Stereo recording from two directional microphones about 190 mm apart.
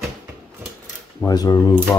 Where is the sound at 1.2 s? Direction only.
20° left (ahead or behind).